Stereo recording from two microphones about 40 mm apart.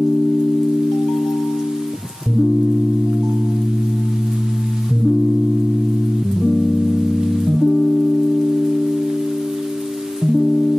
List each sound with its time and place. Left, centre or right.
7.2 s music: centre
10.2 s music: centre